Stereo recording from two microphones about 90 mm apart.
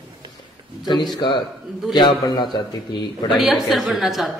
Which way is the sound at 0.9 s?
Centre (ahead or behind).